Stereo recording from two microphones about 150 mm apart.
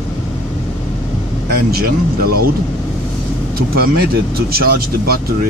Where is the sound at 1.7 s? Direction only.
90° right.